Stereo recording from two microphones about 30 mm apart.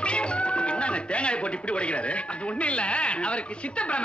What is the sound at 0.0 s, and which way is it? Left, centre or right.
A woman's voice, left.